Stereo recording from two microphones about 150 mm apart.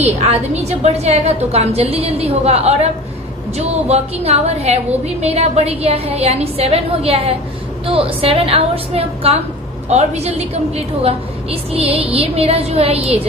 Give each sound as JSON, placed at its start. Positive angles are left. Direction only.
{"t": 0.0, "sound": "a woman's voice", "side_deg": -45}